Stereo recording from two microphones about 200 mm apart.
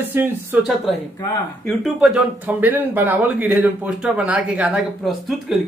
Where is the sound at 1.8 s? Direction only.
5° right (ahead or behind).